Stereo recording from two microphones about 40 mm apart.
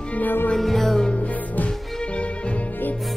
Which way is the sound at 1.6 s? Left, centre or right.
Left.